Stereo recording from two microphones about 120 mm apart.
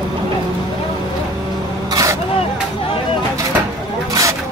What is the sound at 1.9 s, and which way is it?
Vehicle, 30° right (ahead or behind).